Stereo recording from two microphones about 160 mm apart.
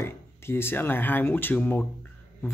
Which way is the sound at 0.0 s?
15° left (ahead or behind).